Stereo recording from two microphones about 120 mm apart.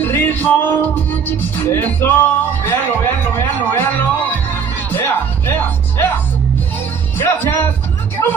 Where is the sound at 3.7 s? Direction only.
15° left (ahead or behind).